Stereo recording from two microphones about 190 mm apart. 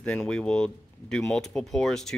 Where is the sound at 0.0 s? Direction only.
5° left (ahead or behind).